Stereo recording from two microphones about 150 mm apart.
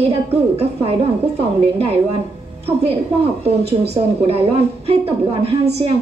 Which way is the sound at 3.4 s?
45° right (ahead or behind).